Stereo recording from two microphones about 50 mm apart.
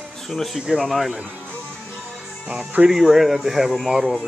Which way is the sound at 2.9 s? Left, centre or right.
Centre.